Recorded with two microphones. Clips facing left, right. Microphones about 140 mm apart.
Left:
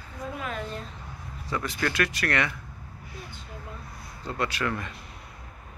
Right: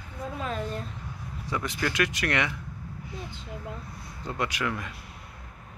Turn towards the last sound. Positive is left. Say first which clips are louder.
# left 1 dB
turn(degrees=-10)  # may be behind; listen again after turning